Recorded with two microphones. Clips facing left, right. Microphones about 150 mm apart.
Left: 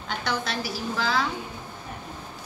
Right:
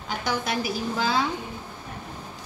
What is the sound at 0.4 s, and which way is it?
Speech, 20° right (ahead or behind).